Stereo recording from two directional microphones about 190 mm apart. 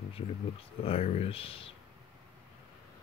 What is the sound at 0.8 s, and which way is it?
Speech, 30° left (ahead or behind).